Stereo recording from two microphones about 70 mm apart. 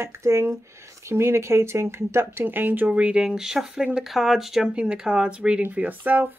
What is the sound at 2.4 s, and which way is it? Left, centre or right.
Speech, right.